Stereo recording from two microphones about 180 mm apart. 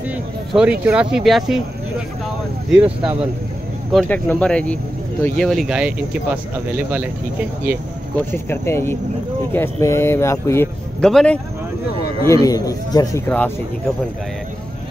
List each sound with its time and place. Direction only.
0.1 s speech: 5° right (ahead or behind)
2.8 s speech: 10° right (ahead or behind)
3.9 s speech: 5° left (ahead or behind)
8.3 s a man's voice: 15° left (ahead or behind)
11.1 s speech: centre (ahead or behind)
12.3 s a man's voice: 20° left (ahead or behind)